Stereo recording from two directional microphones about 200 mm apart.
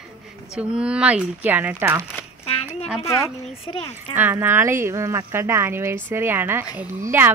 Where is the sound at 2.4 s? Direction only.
30° left (ahead or behind).